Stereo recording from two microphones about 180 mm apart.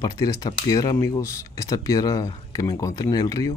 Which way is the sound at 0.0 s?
20° left (ahead or behind).